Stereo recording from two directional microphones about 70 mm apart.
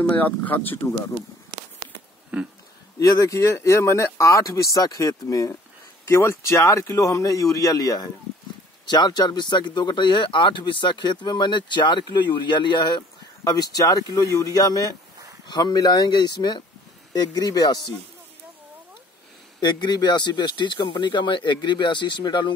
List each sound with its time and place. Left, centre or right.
0.0 s speech: left
2.3 s speech: centre
3.0 s speech: left
6.0 s speech: left
8.8 s speech: left
15.4 s speech: left
17.1 s speech: left
19.6 s speech: left